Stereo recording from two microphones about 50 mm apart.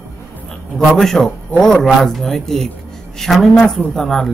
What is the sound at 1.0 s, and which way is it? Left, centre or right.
Speech, centre.